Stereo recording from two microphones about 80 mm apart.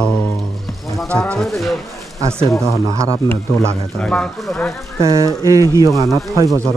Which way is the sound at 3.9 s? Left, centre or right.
Centre.